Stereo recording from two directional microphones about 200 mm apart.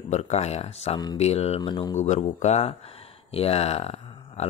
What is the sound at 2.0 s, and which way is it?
Speech, 35° left (ahead or behind).